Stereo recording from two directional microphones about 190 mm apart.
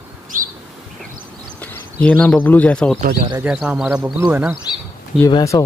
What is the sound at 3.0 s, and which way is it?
Speech, 55° right (ahead or behind).